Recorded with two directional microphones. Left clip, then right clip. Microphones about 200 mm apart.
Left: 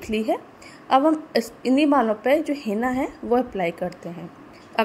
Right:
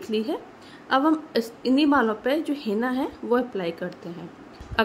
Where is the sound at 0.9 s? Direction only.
10° left (ahead or behind).